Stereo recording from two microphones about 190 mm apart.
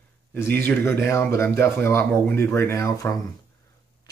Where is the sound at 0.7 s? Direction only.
10° left (ahead or behind).